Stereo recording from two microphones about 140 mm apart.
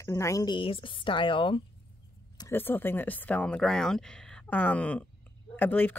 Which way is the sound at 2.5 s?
15° left (ahead or behind).